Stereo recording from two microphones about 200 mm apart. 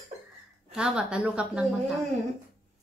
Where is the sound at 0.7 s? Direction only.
5° right (ahead or behind).